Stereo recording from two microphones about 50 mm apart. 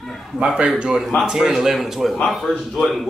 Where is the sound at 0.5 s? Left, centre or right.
Centre.